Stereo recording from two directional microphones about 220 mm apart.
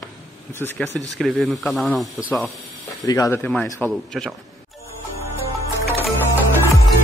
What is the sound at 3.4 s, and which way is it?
Speech, 5° left (ahead or behind).